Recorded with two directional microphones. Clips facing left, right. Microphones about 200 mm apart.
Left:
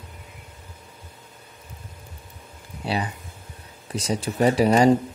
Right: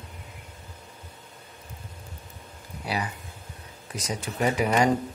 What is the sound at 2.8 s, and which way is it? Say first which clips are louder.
Speech: left 4 dB; 25° left (ahead or behind).